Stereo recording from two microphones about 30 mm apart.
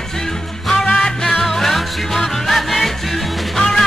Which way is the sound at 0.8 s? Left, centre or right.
Left.